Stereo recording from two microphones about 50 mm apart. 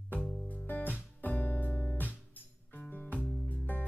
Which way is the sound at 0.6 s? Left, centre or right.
Left.